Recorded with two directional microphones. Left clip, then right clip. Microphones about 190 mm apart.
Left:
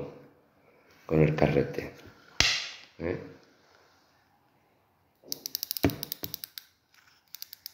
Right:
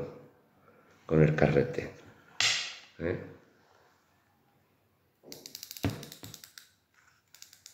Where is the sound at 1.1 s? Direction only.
15° right (ahead or behind).